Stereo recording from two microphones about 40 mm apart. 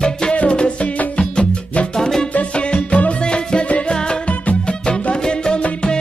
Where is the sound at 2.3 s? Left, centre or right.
Left.